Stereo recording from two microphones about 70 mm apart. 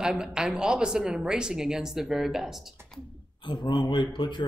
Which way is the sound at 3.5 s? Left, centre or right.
Left.